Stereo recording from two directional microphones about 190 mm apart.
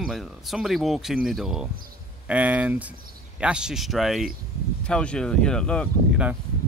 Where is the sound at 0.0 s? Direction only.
Centre (ahead or behind).